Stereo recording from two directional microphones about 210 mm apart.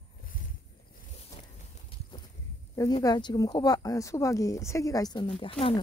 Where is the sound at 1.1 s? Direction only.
30° left (ahead or behind).